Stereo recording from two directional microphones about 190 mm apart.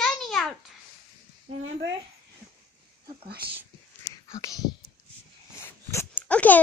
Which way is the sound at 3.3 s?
55° right (ahead or behind).